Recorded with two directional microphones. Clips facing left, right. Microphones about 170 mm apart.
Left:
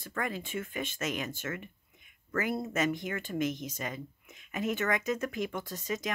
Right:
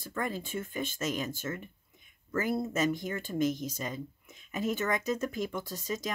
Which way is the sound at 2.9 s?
35° right (ahead or behind).